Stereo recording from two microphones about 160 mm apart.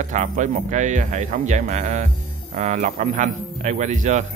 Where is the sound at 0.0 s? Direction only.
50° right (ahead or behind).